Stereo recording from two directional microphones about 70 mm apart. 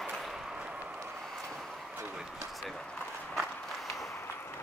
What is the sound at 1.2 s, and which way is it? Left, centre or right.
Vehicle, centre.